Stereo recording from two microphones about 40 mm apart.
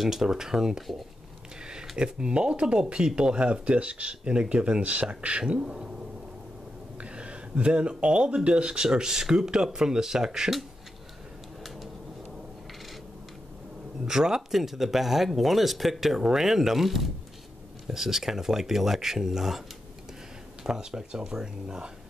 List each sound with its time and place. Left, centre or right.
0.0 s speech: centre
3.2 s speech: right
5.5 s speech: right
7.0 s a sound: right
8.0 s speech: right
14.0 s speech: centre
20.6 s speech: centre